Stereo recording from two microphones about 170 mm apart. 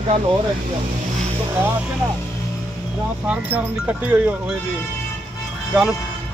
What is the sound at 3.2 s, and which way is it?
Speech, 10° right (ahead or behind).